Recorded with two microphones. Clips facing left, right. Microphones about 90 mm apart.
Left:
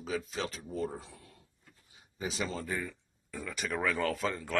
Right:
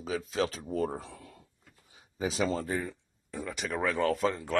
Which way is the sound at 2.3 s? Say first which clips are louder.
Right 5 dB; 40° right (ahead or behind).